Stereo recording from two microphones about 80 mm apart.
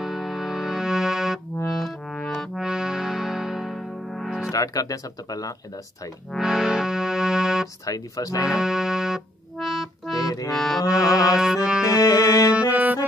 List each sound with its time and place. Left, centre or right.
0.0 s music: centre
4.5 s speech: left
6.3 s music: centre
7.8 s speech: left
8.5 s accordion: centre
10.1 s accordion: left
10.5 s accordion: centre
10.8 s accordion: left
11.3 s music: centre
11.8 s music: left
12.5 s music: right